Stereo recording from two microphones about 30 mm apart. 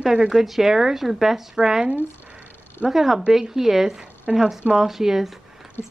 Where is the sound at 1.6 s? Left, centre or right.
Right.